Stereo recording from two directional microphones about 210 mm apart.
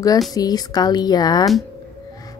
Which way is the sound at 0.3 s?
20° left (ahead or behind).